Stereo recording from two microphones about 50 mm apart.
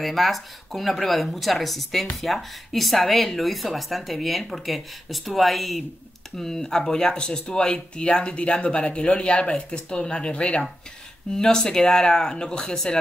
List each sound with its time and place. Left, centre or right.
0.0 s speech: centre